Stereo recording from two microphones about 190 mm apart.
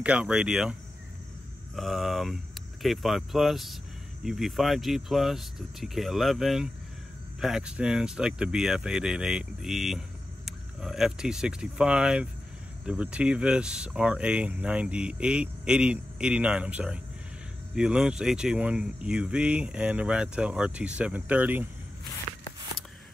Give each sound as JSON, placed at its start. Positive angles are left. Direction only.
{"t": 0.0, "sound": "speech", "side_deg": -5}
{"t": 1.8, "sound": "speech", "side_deg": 0}